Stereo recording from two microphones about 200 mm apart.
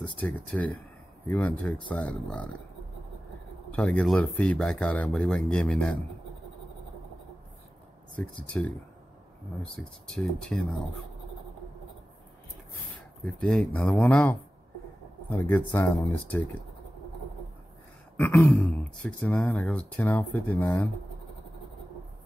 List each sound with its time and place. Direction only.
0.2 s speech: 5° left (ahead or behind)
3.7 s speech: 5° left (ahead or behind)
8.2 s speech: 5° left (ahead or behind)
9.8 s speech: 5° left (ahead or behind)
13.2 s speech: 5° left (ahead or behind)
18.1 s throat clearing: 10° left (ahead or behind)
18.5 s speech: 5° left (ahead or behind)